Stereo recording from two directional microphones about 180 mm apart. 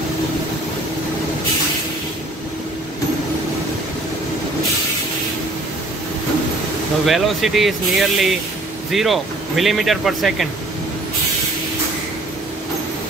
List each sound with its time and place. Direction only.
7.1 s speech: centre (ahead or behind)